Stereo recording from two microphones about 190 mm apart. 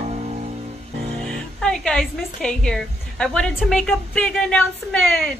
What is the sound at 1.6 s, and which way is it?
A woman's voice, 5° left (ahead or behind).